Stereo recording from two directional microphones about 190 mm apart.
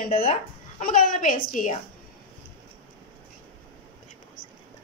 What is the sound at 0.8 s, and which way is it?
Speech, 45° left (ahead or behind).